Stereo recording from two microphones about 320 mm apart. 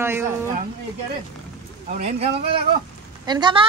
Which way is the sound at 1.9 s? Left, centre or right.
Centre.